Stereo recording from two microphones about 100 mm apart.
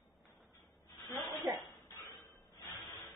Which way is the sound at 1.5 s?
35° right (ahead or behind).